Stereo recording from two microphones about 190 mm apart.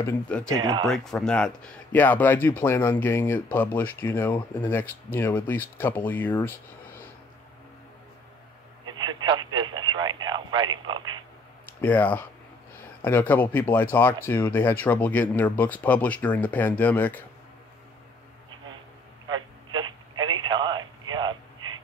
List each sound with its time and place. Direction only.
0.0 s speech: 5° left (ahead or behind)
0.6 s speech: 20° right (ahead or behind)
0.8 s speech: centre (ahead or behind)
8.8 s telephone: 20° right (ahead or behind)
11.8 s speech: 10° left (ahead or behind)
19.2 s telephone: 25° right (ahead or behind)